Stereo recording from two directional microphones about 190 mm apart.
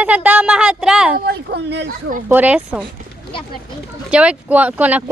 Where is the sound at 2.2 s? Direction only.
10° right (ahead or behind).